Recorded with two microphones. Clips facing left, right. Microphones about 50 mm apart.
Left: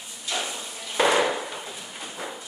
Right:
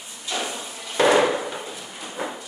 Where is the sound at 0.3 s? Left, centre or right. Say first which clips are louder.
Right 2 dB; centre.